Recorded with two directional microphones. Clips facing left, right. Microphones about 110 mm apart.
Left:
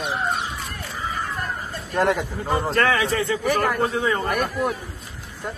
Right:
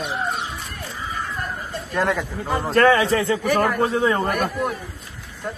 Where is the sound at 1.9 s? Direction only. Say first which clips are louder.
Left 1 dB; 15° left (ahead or behind).